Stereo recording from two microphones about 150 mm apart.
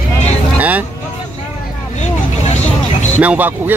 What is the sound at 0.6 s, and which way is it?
Speech, 10° right (ahead or behind).